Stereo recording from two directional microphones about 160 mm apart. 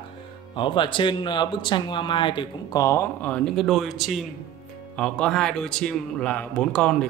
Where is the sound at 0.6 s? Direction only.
30° left (ahead or behind).